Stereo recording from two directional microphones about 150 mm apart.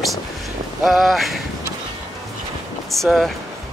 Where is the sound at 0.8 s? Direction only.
Centre (ahead or behind).